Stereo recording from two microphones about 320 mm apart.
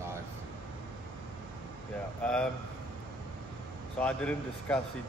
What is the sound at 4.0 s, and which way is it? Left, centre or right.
Speech, centre.